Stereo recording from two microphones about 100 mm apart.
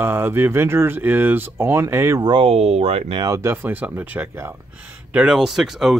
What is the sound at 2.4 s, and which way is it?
Speech, 90° right.